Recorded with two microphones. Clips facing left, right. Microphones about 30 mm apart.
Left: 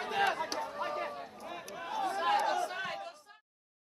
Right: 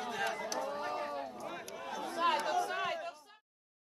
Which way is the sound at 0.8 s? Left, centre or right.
Left.